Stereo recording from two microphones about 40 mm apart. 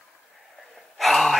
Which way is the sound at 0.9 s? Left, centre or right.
Centre.